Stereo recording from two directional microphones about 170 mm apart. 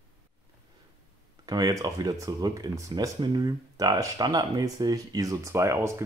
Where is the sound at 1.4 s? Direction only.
20° right (ahead or behind).